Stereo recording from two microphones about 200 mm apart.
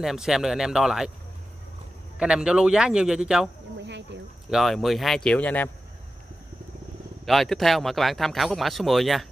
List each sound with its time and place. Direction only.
0.0 s speech: centre (ahead or behind)
2.1 s speech: 5° right (ahead or behind)
3.8 s a sound: 60° right (ahead or behind)
4.5 s speech: centre (ahead or behind)
7.2 s speech: centre (ahead or behind)